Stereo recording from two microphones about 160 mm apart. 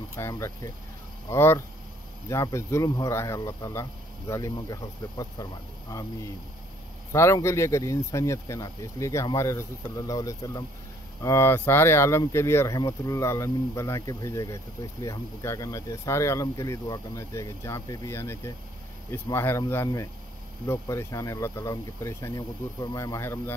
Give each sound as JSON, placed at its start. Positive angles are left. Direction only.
{"t": 0.1, "sound": "speech", "side_deg": 20}
{"t": 7.1, "sound": "speech", "side_deg": 20}